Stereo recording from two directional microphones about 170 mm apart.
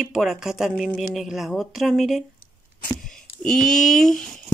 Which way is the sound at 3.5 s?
5° left (ahead or behind).